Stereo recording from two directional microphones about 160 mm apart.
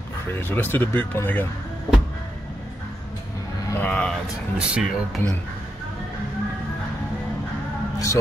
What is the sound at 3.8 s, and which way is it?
Speech, 5° left (ahead or behind).